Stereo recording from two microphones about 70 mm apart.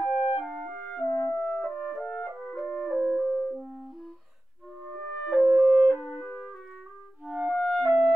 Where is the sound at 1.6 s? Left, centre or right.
Centre.